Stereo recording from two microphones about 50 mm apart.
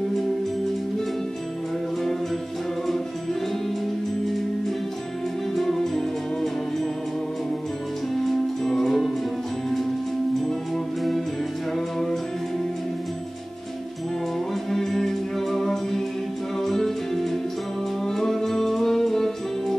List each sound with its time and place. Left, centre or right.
5.5 s music: centre
8.1 s music: centre
11.0 s music: centre
14.5 s music: centre